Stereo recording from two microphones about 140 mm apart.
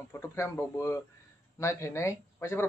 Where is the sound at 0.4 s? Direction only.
20° left (ahead or behind).